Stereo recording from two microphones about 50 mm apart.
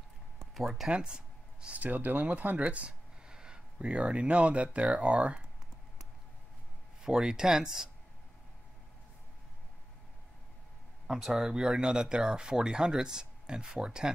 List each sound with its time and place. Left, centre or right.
0.6 s speech: centre
0.8 s a sound: centre
1.8 s speech: right; by 5.5 s centre
7.0 s speech: centre
11.1 s speech: centre